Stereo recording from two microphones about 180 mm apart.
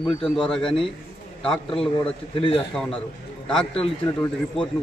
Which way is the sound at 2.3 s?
30° left (ahead or behind).